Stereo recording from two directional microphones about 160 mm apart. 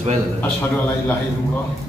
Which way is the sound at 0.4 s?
10° left (ahead or behind).